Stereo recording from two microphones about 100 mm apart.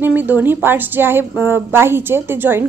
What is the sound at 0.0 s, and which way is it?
A woman's voice, 20° right (ahead or behind).